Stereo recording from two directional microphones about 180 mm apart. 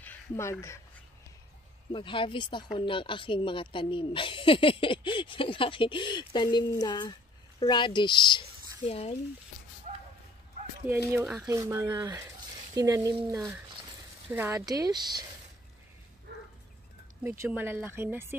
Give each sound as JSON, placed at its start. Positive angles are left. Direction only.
{"t": 0.0, "sound": "speech", "side_deg": 15}
{"t": 1.9, "sound": "speech", "side_deg": 25}
{"t": 9.9, "sound": "a sound", "side_deg": -40}
{"t": 11.4, "sound": "speech", "side_deg": -15}
{"t": 16.3, "sound": "dog", "side_deg": -70}
{"t": 17.2, "sound": "speech", "side_deg": -10}